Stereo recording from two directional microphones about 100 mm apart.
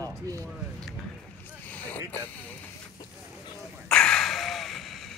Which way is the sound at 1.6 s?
15° left (ahead or behind).